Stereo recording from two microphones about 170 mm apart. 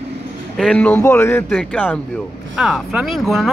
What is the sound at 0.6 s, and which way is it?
Speech, 5° left (ahead or behind).